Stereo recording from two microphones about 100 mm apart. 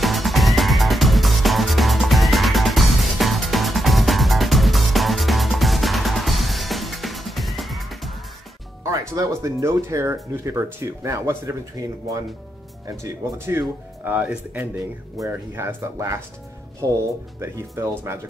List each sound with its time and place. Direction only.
0.0 s music: centre (ahead or behind)
8.8 s speech: 35° right (ahead or behind)
13.0 s speech: 20° right (ahead or behind)
15.1 s speech: 30° right (ahead or behind)